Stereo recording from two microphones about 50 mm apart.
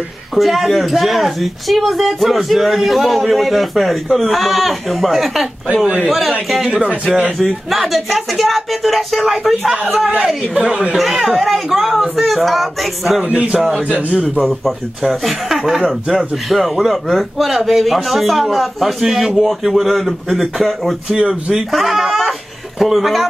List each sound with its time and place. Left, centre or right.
0.3 s speech: centre
7.3 s speech: centre
9.9 s a man's voice: right
11.2 s speech: centre
13.2 s a man's voice: right
15.2 s speech: centre
21.1 s a man's voice: centre
21.7 s speech: centre